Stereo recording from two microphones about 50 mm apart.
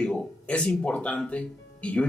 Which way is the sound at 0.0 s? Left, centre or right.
Left.